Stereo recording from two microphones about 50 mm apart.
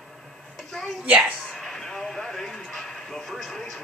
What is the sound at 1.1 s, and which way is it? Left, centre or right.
Speech, right.